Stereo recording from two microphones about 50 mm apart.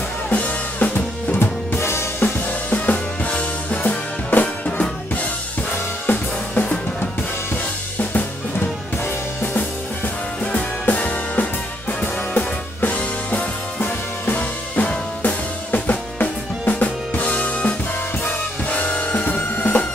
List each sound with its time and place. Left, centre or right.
0.3 s drum kit: left
1.4 s drum kit: left
2.2 s music: left
5.1 s drum kit: left
8.0 s drum kit: left
10.4 s music: left
12.9 s music: left